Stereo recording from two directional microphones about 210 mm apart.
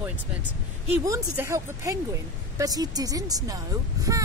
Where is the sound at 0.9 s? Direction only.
10° right (ahead or behind).